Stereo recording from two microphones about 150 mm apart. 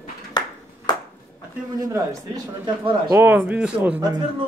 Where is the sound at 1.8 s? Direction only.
25° right (ahead or behind).